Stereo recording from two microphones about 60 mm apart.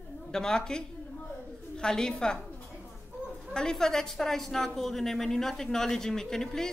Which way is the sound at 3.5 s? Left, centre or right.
Centre.